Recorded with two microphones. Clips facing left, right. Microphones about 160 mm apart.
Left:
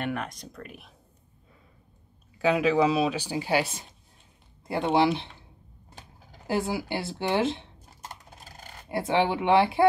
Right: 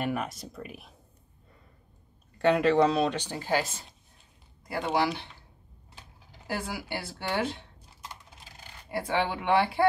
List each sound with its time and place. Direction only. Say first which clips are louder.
0.0 s speech: right 1 dB; 5° right (ahead or behind)
2.3 s speech: even; 5° left (ahead or behind)
4.9 s speech: left 5 dB; 20° left (ahead or behind)
6.4 s speech: left 7 dB; 25° left (ahead or behind)
8.0 s coin: left 2 dB; 45° left (ahead or behind)
8.9 s speech: left 4 dB; 20° left (ahead or behind)